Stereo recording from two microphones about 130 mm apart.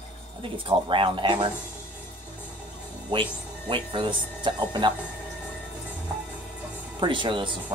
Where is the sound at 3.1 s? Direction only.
40° right (ahead or behind).